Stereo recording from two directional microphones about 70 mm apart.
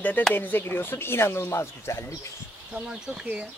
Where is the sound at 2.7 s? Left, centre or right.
Centre.